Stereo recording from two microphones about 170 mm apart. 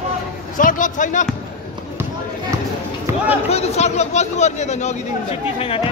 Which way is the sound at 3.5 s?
40° left (ahead or behind).